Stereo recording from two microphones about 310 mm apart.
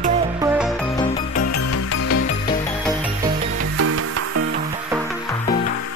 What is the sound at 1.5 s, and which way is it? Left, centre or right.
Music, left.